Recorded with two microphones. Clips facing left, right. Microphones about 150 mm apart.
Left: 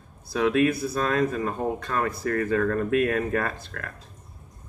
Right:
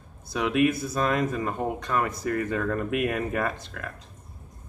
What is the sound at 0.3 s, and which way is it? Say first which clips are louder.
Speech: left 2 dB; 20° right (ahead or behind).